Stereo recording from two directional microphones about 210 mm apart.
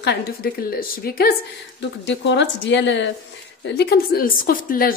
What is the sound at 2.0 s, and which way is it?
A woman's voice, 55° left (ahead or behind).